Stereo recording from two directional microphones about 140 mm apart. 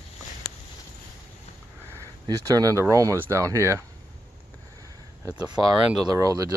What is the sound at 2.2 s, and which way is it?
Speech, 25° right (ahead or behind).